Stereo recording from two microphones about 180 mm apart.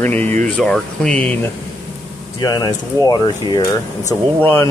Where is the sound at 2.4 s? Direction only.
20° left (ahead or behind).